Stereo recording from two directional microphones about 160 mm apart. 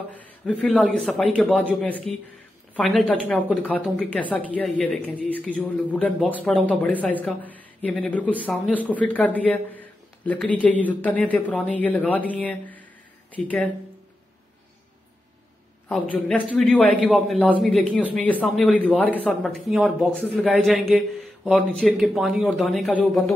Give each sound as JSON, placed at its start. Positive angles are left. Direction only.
{"t": 0.1, "sound": "a man's voice", "side_deg": 10}
{"t": 15.9, "sound": "speech", "side_deg": 5}